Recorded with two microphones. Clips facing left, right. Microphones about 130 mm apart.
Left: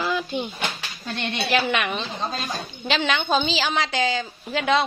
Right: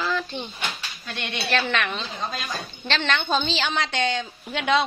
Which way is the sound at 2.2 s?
35° left (ahead or behind).